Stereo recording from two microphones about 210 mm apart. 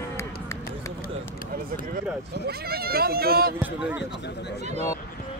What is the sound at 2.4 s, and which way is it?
Speech, 50° right (ahead or behind).